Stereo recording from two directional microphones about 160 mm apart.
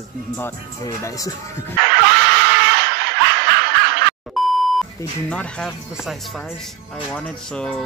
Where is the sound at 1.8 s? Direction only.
90° right.